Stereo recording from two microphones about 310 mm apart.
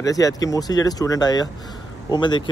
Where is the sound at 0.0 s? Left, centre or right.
Centre.